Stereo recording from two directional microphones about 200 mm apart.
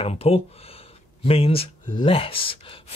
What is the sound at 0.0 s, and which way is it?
Speech, 30° left (ahead or behind).